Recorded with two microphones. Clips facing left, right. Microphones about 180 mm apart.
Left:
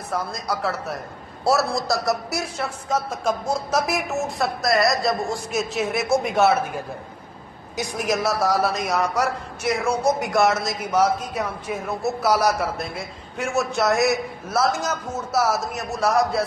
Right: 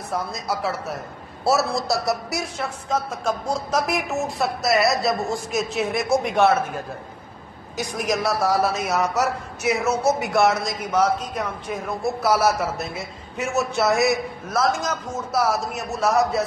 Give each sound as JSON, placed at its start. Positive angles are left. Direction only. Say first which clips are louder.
{"t": 0.1, "sound": "a man's voice", "louder": "even", "side_deg": 0}
{"t": 8.0, "sound": "a man's voice", "louder": "even", "side_deg": 0}